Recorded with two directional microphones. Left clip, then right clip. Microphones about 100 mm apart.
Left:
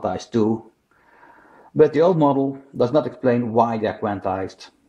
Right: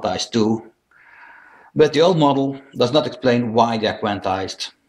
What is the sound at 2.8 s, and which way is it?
Speech, 55° left (ahead or behind).